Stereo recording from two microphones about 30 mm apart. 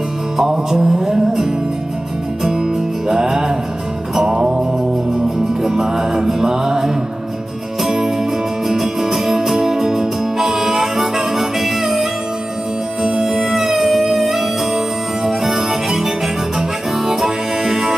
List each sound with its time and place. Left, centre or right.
0.4 s music: centre
4.3 s music: right
5.9 s music: centre